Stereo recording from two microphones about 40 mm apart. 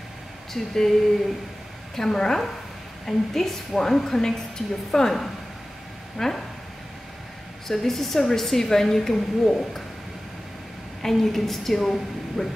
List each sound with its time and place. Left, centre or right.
0.5 s a woman's voice: centre
2.0 s a woman's voice: centre
6.1 s a woman's voice: centre
7.6 s a woman's voice: centre
11.0 s a woman's voice: centre